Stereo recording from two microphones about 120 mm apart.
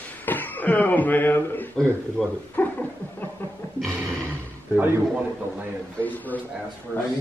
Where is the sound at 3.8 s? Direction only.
20° right (ahead or behind).